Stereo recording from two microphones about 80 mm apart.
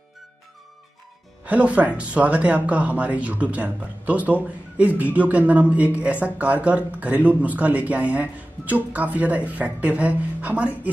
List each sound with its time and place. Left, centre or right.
1.4 s speech: centre